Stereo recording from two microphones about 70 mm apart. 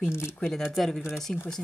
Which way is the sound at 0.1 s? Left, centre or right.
Left.